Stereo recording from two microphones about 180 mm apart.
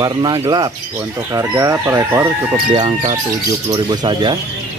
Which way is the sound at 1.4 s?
15° right (ahead or behind).